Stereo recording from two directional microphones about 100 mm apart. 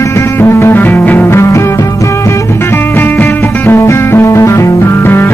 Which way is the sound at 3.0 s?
20° left (ahead or behind).